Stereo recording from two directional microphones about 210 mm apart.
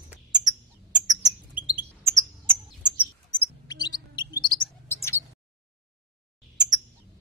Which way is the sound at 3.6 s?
20° left (ahead or behind).